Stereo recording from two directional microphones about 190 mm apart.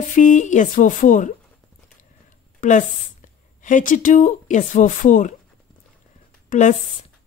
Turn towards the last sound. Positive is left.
turn(degrees=40)  # may be behind; listen again after turning